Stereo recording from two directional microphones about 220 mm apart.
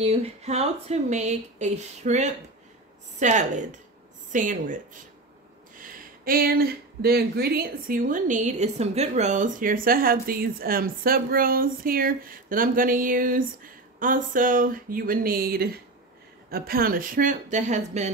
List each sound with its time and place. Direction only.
0.0 s speech: 25° right (ahead or behind)
5.8 s speech: 40° right (ahead or behind)